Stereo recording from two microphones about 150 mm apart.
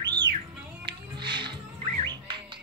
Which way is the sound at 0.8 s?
30° right (ahead or behind).